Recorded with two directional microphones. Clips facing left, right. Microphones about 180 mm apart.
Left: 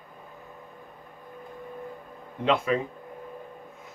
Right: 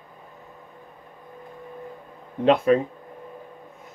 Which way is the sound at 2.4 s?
40° right (ahead or behind).